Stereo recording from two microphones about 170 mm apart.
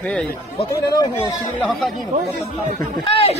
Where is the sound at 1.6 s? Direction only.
Centre (ahead or behind).